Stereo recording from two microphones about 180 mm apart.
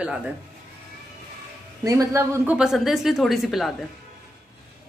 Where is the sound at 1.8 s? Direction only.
15° right (ahead or behind).